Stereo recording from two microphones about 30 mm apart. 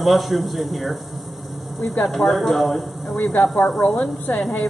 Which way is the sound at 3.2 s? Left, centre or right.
Left.